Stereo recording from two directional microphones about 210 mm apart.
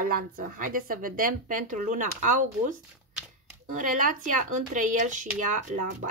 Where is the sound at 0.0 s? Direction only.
45° right (ahead or behind).